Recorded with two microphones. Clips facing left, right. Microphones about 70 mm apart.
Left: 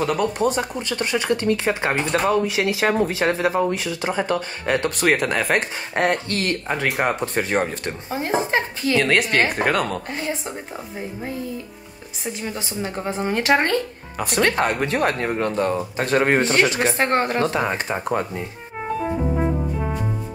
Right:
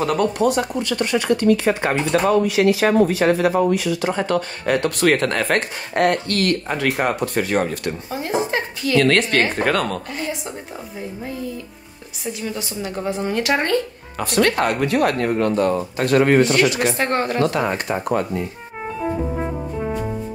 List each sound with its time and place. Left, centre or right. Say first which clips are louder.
0.0 s speech: right 2 dB; centre
0.7 s speech: right 3 dB; left
4.1 s speech: right 2 dB; centre
5.1 s speech: right 1 dB; centre
5.9 s speech: right 3 dB; left
9.0 s speech: right 2 dB; centre
12.4 s speech: even; left
14.1 s speech: right 2 dB; centre; by 17.5 s left
17.5 s speech: right 1 dB; left
19.0 s music: even; centre